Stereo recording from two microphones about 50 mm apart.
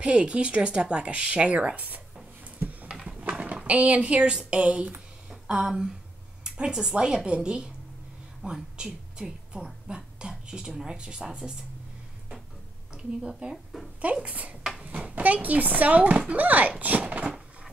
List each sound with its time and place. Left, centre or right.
0.0 s speech: right
3.2 s speech: right
5.3 s a woman's voice: centre
13.4 s speech: right
17.0 s speech: right